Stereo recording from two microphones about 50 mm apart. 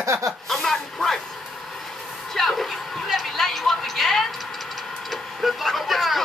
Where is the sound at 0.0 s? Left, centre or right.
Right.